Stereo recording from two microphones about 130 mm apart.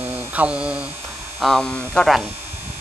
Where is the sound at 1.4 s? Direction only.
5° left (ahead or behind).